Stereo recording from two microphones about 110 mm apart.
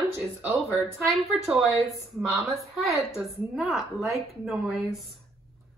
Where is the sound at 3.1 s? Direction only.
Centre (ahead or behind).